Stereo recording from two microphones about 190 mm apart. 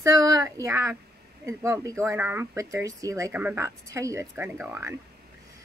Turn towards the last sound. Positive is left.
turn(degrees=-10)  # may be behind; listen again after turning